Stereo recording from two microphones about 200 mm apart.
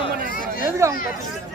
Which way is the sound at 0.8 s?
15° right (ahead or behind).